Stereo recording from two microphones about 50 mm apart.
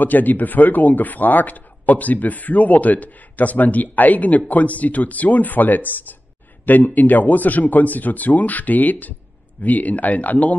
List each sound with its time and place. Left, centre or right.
0.0 s speech: left